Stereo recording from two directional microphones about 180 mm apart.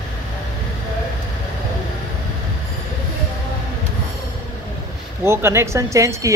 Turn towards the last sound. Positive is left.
turn(degrees=-15)  # may be behind; listen again after turning